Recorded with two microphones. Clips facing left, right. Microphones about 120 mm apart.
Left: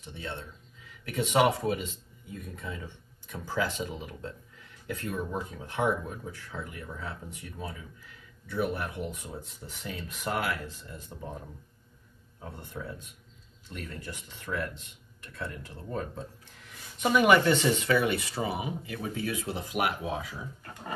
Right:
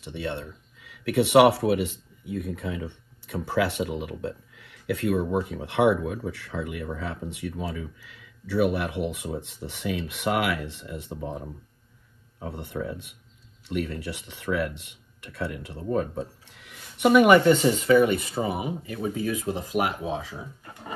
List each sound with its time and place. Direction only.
0.0 s speech: 70° right (ahead or behind)
12.4 s speech: 75° right (ahead or behind); by 18.9 s 40° right (ahead or behind)
18.9 s speech: 25° right (ahead or behind)
19.4 s speech: 40° right (ahead or behind)